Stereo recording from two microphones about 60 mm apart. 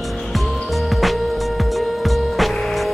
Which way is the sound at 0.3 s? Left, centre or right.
Centre.